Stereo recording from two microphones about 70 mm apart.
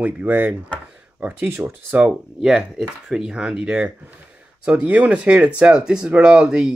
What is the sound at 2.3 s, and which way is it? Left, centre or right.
Speech, centre.